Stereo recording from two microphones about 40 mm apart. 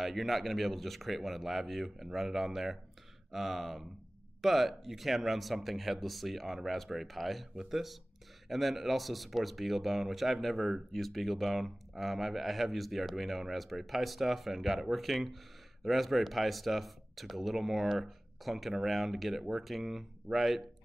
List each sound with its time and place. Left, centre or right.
0.0 s speech: centre